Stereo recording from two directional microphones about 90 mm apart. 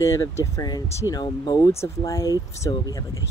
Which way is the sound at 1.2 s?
50° left (ahead or behind).